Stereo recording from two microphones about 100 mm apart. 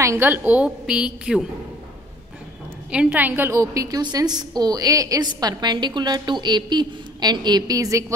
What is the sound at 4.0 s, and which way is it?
A woman's voice, 45° right (ahead or behind).